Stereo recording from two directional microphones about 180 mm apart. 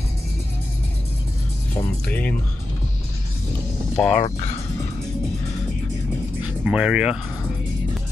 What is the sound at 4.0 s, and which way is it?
Speech, 40° left (ahead or behind).